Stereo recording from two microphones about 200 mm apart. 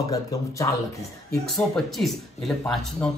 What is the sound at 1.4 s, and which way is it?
Speech, centre (ahead or behind).